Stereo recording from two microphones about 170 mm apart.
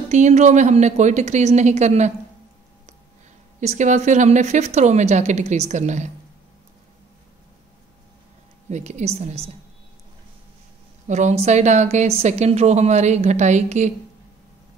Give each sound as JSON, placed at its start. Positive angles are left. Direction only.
{"t": 0.1, "sound": "speech", "side_deg": -45}
{"t": 3.6, "sound": "speech", "side_deg": -45}
{"t": 8.6, "sound": "speech", "side_deg": -40}
{"t": 11.1, "sound": "speech", "side_deg": -45}